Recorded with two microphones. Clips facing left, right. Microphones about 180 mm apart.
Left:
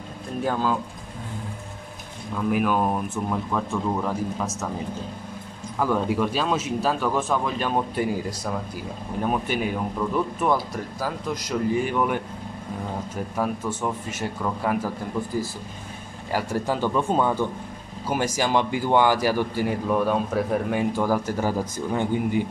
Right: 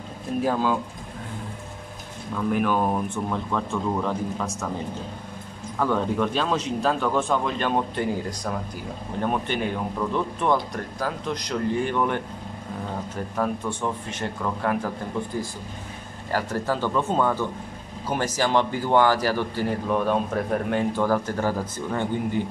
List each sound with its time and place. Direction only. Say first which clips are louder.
0.5 s speech: even; centre (ahead or behind)
2.3 s speech: left 1 dB; 5° left (ahead or behind)
5.8 s speech: even; 5° left (ahead or behind)
13.4 s speech: even; 5° left (ahead or behind)
16.3 s speech: even; 10° left (ahead or behind)